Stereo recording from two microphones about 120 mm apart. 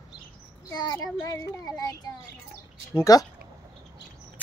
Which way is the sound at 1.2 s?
25° left (ahead or behind).